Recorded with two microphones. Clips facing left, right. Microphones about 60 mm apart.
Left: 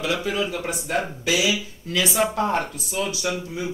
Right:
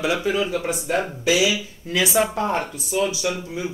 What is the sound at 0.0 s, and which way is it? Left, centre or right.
Speech, centre.